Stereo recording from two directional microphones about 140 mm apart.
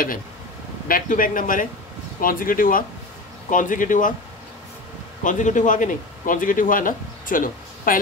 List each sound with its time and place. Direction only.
0.8 s speech: 80° left
2.1 s speech: 90° left
3.4 s speech: 70° left (ahead or behind)
5.2 s speech: 65° left (ahead or behind); by 8.0 s 80° left